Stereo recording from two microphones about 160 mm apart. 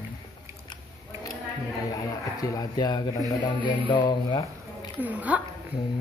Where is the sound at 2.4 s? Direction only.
25° left (ahead or behind).